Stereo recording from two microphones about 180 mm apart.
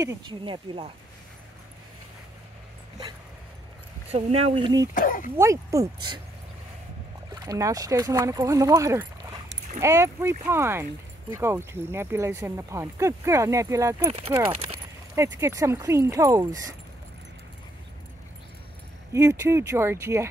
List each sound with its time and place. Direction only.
0.0 s speech: 20° right (ahead or behind)
4.1 s speech: 35° right (ahead or behind)
4.9 s speech: 50° left (ahead or behind)
5.4 s speech: 15° right (ahead or behind)
7.3 s speech: 20° right (ahead or behind)
15.3 s speech: 15° right (ahead or behind)
19.1 s speech: 15° right (ahead or behind)